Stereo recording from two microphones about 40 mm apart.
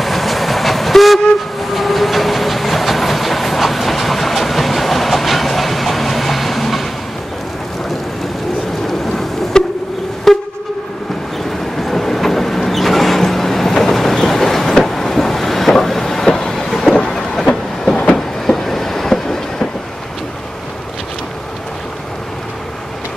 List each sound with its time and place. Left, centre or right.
0.0 s train: centre
9.5 s a sound: centre
10.3 s train: centre
11.8 s vehicle: centre
18.1 s train: centre